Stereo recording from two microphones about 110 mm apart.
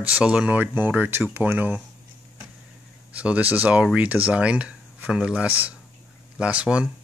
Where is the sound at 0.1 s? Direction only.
10° right (ahead or behind).